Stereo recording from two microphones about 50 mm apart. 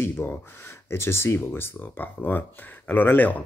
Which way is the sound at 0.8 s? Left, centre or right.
Left.